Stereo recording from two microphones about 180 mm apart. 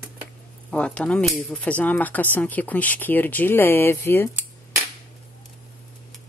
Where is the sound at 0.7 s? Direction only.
5° left (ahead or behind).